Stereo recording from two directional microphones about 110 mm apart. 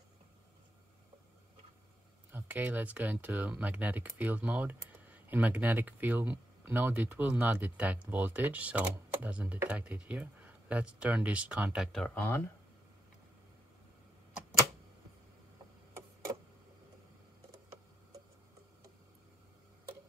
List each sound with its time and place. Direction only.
2.3 s speech: 15° right (ahead or behind)
12.1 s speech: 20° left (ahead or behind)